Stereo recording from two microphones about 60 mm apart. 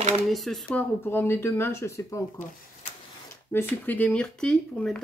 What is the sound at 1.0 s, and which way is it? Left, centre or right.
Speech, left.